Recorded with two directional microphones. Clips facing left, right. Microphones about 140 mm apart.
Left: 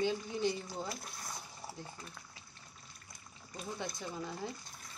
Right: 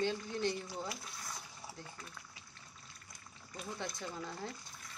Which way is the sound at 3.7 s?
10° left (ahead or behind).